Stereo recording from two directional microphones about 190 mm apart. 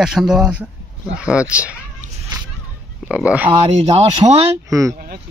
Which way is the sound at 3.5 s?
30° right (ahead or behind).